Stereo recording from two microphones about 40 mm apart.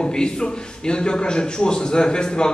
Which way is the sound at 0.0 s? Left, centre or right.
Centre.